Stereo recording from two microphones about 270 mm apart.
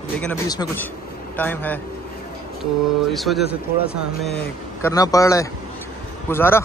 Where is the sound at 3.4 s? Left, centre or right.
Left.